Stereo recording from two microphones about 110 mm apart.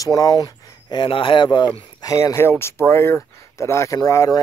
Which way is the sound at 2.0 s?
30° left (ahead or behind).